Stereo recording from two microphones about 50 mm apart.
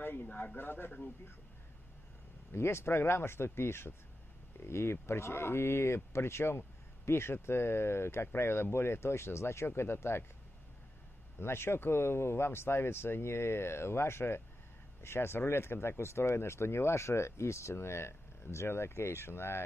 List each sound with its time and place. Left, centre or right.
0.0 s a sound: left
0.6 s a man's voice: left
2.5 s speech: left
11.3 s speech: left